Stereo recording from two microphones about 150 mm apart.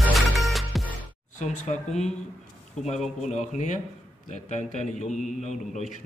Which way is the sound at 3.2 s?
50° left (ahead or behind).